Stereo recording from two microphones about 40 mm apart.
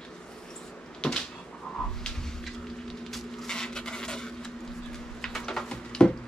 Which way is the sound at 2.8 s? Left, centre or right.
Centre.